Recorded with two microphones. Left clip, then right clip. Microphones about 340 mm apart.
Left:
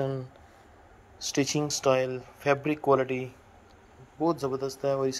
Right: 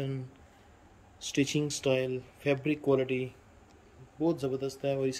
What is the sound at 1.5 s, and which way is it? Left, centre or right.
Speech, centre.